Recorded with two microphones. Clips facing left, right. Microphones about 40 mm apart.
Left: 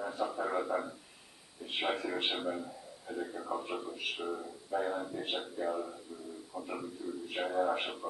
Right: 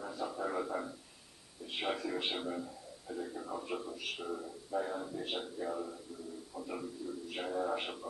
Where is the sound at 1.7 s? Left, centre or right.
Left.